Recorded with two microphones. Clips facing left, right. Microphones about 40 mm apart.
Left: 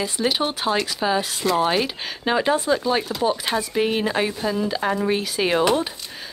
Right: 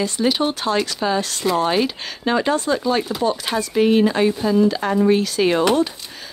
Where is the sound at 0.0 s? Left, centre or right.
Centre.